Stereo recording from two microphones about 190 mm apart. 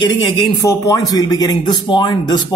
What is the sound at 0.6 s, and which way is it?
A man's voice, 20° left (ahead or behind).